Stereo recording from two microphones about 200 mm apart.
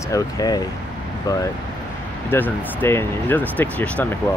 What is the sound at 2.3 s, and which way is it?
Speech, 10° left (ahead or behind).